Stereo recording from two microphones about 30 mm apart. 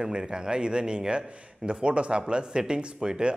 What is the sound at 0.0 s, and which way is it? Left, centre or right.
A man's voice, right.